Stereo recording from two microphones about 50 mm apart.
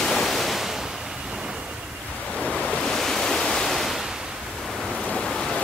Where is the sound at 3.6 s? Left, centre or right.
Centre.